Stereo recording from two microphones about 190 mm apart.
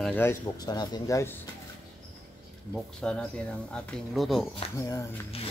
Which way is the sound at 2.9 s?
5° left (ahead or behind).